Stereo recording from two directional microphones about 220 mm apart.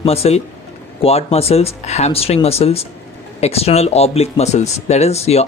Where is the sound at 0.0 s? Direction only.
25° left (ahead or behind).